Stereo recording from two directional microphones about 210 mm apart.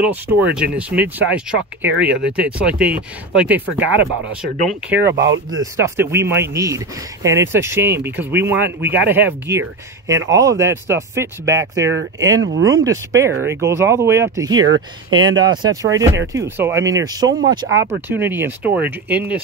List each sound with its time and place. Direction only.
0.0 s speech: 5° right (ahead or behind)
5.2 s speech: 60° right (ahead or behind)
5.6 s speech: 15° right (ahead or behind)
14.6 s speech: 70° right (ahead or behind)
15.1 s speech: 20° right (ahead or behind)